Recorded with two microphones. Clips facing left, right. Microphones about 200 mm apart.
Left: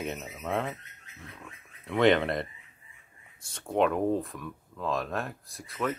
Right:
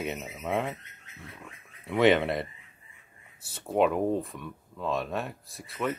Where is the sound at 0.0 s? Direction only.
Centre (ahead or behind).